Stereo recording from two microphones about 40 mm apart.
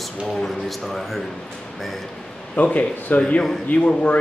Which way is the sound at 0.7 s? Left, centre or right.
Centre.